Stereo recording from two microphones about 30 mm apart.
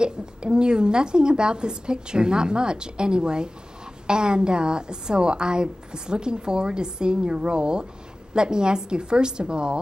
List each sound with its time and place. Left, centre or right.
0.0 s a woman's voice: right